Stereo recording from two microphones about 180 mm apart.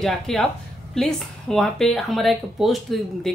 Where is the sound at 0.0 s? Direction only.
Centre (ahead or behind).